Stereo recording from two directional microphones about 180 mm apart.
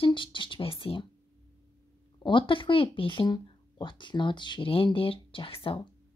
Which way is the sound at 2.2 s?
25° left (ahead or behind).